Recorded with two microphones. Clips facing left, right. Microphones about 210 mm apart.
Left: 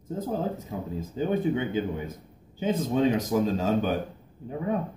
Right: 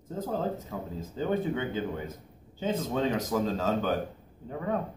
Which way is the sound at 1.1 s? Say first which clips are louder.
Left 3 dB; 15° left (ahead or behind).